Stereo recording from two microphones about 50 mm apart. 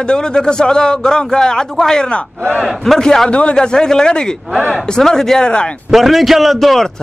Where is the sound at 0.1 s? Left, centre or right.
Centre.